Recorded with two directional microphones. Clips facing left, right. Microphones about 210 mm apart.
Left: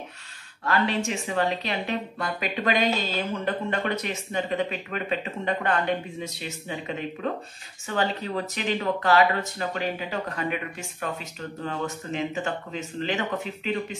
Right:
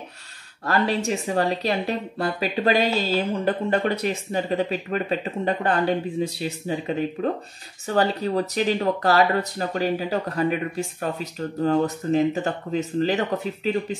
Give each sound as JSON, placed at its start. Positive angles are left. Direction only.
{"t": 0.7, "sound": "speech", "side_deg": -35}